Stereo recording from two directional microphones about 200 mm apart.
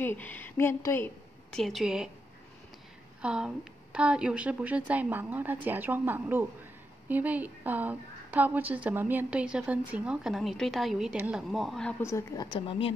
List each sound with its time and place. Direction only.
0.0 s a woman's voice: 10° left (ahead or behind)
3.2 s a woman's voice: 5° right (ahead or behind)
12.0 s a woman's voice: 15° left (ahead or behind)
12.5 s speech: 25° left (ahead or behind)